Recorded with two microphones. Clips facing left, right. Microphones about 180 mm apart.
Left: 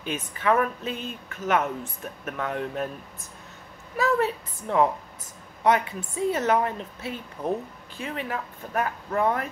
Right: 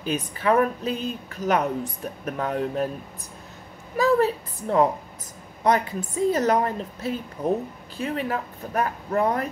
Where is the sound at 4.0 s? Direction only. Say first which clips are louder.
Right 4 dB; 35° right (ahead or behind).